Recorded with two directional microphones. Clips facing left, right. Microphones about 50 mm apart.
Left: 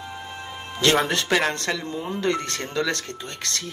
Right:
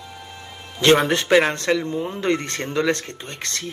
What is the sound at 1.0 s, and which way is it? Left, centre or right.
Speech, right.